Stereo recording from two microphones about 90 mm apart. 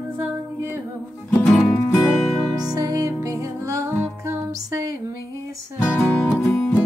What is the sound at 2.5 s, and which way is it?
Music, 45° right (ahead or behind).